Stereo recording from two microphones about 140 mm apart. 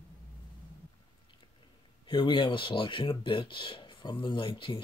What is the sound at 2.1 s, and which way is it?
Speech, 35° left (ahead or behind).